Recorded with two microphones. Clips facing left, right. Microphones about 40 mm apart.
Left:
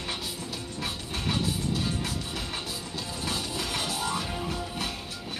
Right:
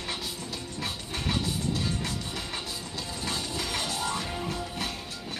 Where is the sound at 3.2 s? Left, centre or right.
Centre.